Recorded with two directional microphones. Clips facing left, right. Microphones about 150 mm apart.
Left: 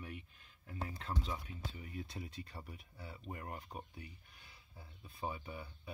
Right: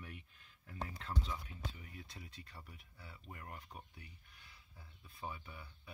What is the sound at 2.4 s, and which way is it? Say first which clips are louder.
Speech: left 6 dB; 25° left (ahead or behind).